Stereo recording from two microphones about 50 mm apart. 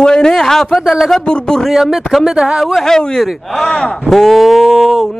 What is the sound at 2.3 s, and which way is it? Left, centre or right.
Speech, centre.